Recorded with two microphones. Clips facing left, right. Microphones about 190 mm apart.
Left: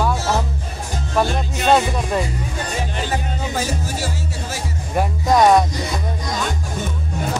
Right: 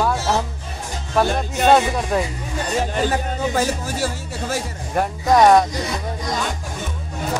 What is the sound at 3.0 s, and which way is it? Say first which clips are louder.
Music: right 4 dB; 50° right (ahead or behind).